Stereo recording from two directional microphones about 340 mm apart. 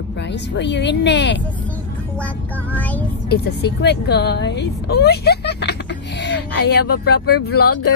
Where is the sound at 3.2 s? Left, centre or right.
Left.